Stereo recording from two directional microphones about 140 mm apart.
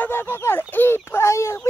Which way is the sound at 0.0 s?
15° left (ahead or behind).